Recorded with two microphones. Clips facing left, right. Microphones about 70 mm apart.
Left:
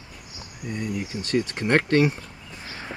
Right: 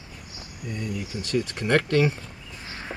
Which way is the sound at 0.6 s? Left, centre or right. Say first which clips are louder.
Left 2 dB; centre.